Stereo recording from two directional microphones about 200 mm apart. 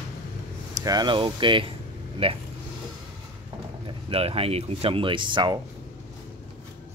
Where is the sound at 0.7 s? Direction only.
20° right (ahead or behind).